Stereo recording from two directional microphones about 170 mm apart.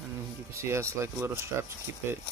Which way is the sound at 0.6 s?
15° right (ahead or behind).